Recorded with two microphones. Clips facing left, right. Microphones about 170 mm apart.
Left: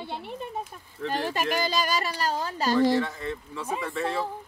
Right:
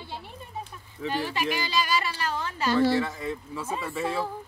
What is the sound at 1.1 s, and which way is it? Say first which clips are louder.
Speech: left 2 dB; 45° left (ahead or behind).